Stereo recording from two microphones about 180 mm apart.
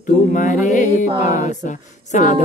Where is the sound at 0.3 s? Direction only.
45° left (ahead or behind).